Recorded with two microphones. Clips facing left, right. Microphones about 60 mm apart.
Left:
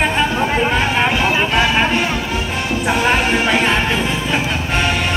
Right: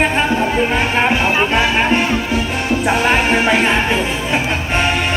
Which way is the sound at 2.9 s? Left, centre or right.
Centre.